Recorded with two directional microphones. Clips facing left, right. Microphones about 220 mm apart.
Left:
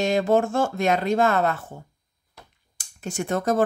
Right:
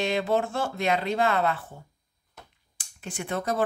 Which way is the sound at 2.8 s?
45° left (ahead or behind).